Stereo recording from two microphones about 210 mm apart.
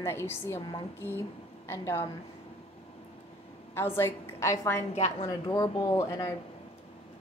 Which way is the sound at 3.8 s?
10° left (ahead or behind).